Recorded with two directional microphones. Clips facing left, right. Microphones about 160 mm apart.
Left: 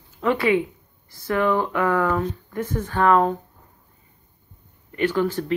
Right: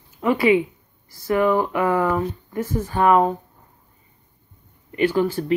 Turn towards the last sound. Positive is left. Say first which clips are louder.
# right 2 dB
turn(degrees=-10)  # may be behind; listen again after turning